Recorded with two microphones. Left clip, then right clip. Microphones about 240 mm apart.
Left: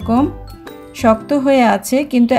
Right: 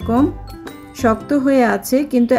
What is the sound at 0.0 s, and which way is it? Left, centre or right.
Speech, left.